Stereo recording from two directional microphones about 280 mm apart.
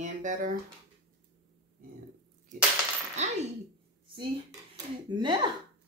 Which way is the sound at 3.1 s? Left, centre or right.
Right.